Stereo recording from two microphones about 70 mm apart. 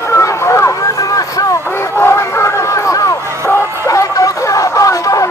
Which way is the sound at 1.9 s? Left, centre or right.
Left.